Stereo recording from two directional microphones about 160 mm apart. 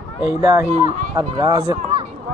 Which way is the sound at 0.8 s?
20° right (ahead or behind).